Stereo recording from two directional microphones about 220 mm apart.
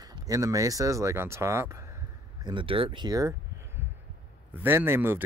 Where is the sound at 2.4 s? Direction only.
25° right (ahead or behind).